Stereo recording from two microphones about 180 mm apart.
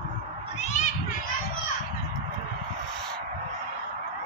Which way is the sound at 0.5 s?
40° left (ahead or behind).